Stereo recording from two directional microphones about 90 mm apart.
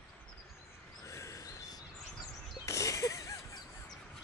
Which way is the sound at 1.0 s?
35° left (ahead or behind).